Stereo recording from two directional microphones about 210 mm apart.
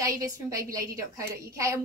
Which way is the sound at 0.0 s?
15° right (ahead or behind).